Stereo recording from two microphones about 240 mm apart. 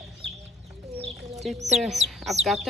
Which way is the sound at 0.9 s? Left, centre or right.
Right.